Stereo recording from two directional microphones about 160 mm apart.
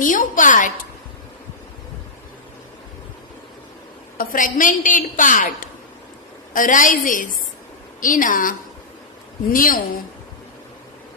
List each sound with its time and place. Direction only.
0.0 s a woman's voice: 55° left (ahead or behind)
4.2 s a woman's voice: 60° left (ahead or behind)